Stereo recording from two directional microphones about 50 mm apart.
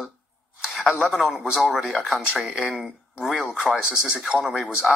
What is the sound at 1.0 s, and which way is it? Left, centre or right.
A man's voice, centre.